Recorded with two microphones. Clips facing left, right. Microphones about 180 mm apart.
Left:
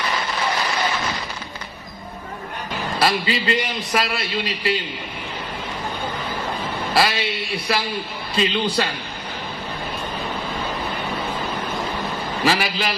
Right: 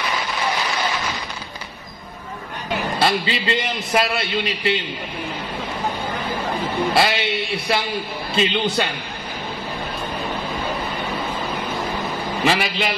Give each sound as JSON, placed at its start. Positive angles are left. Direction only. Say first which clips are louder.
{"t": 3.0, "sound": "a man's voice", "louder": "left 2 dB", "side_deg": -25}
{"t": 6.9, "sound": "a man's voice", "louder": "even", "side_deg": -25}
{"t": 8.4, "sound": "a man's voice", "louder": "even", "side_deg": -20}
{"t": 12.4, "sound": "a man's voice", "louder": "even", "side_deg": -25}